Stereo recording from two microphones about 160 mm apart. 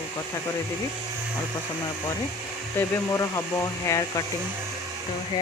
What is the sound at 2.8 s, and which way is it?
Speech, 20° left (ahead or behind).